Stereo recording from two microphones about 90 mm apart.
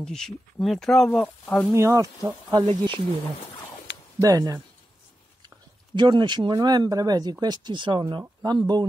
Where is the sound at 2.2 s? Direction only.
50° right (ahead or behind).